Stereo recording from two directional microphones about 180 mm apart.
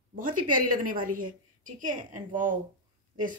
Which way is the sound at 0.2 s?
50° right (ahead or behind).